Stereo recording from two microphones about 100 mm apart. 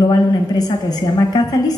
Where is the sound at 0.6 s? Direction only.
40° left (ahead or behind).